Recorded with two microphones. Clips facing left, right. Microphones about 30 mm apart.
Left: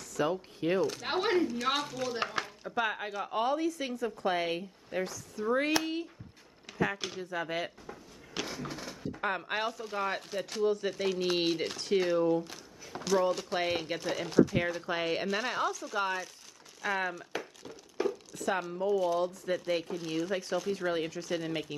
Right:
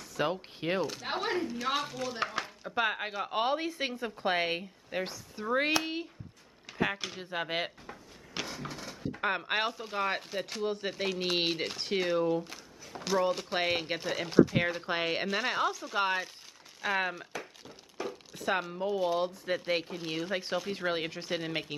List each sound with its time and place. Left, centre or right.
0.1 s speech: right
1.0 s speech: centre
1.5 s speech: centre
2.0 s speech: centre
2.7 s speech: right
3.3 s speech: right
7.2 s speech: right
8.6 s a sound: centre
9.1 s a sound: right
9.5 s speech: right
15.0 s speech: centre
18.0 s crumpling: centre
18.3 s speech: right